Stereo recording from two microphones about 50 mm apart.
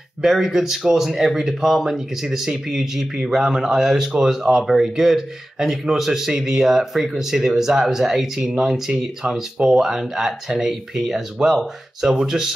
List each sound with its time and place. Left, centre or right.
0.2 s speech: centre